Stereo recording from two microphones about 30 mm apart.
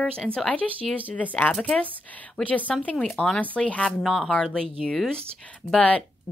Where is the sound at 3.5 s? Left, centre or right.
Left.